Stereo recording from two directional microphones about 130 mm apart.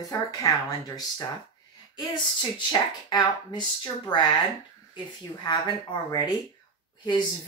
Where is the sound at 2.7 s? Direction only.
35° left (ahead or behind).